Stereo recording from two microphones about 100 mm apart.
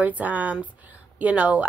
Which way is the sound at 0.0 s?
15° right (ahead or behind).